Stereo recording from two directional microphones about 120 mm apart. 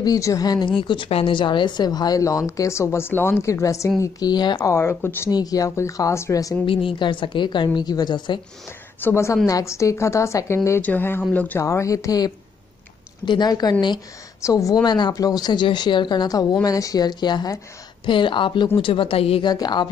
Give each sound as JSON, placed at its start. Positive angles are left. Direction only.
{"t": 0.0, "sound": "a woman's voice", "side_deg": 30}
{"t": 4.6, "sound": "a woman's voice", "side_deg": 20}
{"t": 5.3, "sound": "a woman's voice", "side_deg": 30}
{"t": 6.6, "sound": "speech", "side_deg": 45}
{"t": 9.0, "sound": "a woman's voice", "side_deg": 20}
{"t": 11.6, "sound": "a woman's voice", "side_deg": 25}
{"t": 19.4, "sound": "speech", "side_deg": 35}